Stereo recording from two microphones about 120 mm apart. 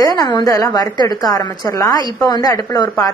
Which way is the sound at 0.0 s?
30° left (ahead or behind).